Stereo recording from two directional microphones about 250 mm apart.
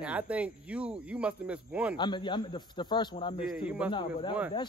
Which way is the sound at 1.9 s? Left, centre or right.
Centre.